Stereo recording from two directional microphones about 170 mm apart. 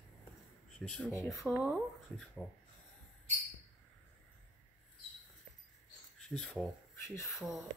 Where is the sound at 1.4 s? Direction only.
Centre (ahead or behind).